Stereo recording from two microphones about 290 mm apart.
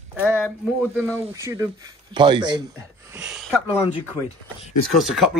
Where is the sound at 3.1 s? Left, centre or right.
Centre.